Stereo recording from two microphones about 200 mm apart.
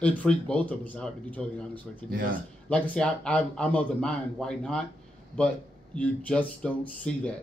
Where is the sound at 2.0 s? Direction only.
45° right (ahead or behind).